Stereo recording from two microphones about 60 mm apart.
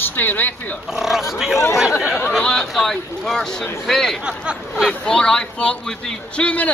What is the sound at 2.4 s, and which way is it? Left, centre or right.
Speech, centre.